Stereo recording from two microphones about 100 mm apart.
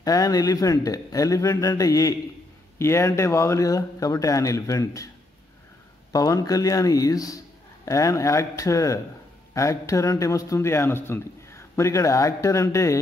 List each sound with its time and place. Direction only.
0.0 s a man's voice: 40° left (ahead or behind)
6.1 s a man's voice: 35° left (ahead or behind)